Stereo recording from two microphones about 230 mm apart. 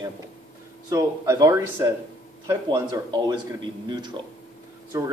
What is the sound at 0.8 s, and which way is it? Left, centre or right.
Speech, centre.